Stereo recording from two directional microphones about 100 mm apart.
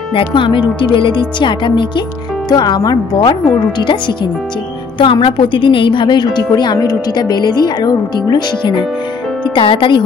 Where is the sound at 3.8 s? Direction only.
50° left (ahead or behind).